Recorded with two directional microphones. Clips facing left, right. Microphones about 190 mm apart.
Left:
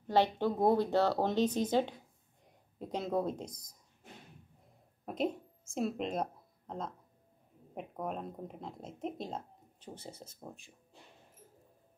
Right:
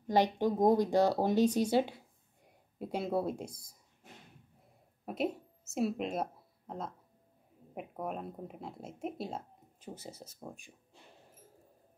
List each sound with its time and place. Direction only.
0.0 s speech: 15° right (ahead or behind)
5.0 s a woman's voice: 5° right (ahead or behind)